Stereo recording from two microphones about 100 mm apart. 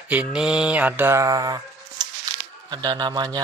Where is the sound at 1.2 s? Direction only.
35° right (ahead or behind).